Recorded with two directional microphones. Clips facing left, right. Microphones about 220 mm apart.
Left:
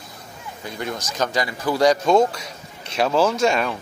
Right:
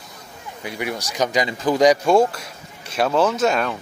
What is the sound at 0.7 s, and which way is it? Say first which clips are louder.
Speech: right 2 dB; 15° right (ahead or behind).